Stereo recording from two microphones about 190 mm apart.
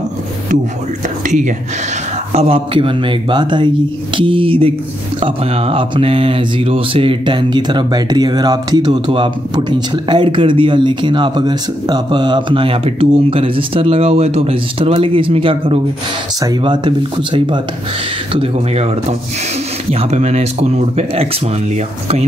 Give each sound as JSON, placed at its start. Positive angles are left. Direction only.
{"t": 1.2, "sound": "speech", "side_deg": -40}